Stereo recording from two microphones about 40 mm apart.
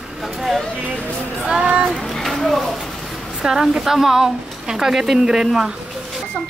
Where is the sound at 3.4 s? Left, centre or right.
Centre.